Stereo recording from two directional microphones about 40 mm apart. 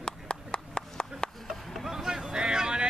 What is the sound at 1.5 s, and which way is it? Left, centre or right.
Vehicle, centre.